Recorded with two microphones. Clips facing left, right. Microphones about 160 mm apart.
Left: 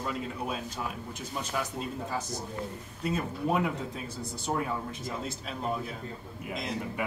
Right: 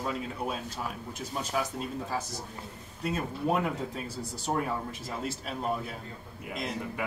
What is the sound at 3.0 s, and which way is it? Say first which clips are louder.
Speech: even; centre (ahead or behind).